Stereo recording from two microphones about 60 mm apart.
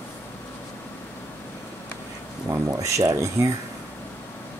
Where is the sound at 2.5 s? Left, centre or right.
Right.